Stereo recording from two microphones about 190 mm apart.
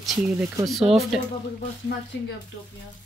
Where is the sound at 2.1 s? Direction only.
75° left (ahead or behind).